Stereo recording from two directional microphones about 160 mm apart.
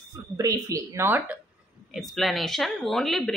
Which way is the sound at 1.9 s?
Centre (ahead or behind).